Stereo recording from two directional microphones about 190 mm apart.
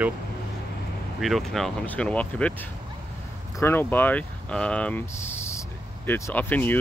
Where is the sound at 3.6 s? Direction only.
10° left (ahead or behind).